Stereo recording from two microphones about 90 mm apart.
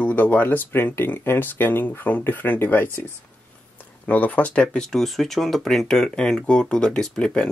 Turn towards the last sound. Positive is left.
turn(degrees=10)  # may be behind; listen again after turning